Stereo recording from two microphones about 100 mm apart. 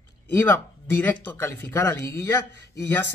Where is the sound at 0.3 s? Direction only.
25° left (ahead or behind).